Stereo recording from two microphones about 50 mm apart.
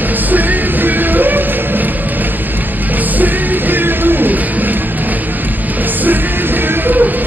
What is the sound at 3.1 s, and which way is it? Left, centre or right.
Music, right.